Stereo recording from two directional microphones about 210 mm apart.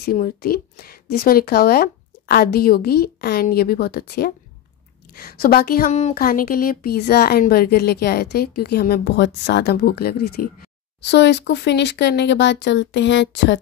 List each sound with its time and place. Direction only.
0.0 s a woman's voice: 45° left (ahead or behind)